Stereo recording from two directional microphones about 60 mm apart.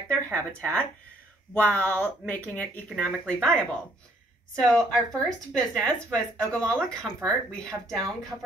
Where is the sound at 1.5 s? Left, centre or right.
Left.